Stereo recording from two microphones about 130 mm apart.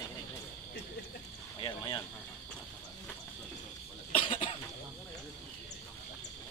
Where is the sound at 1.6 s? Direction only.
35° left (ahead or behind).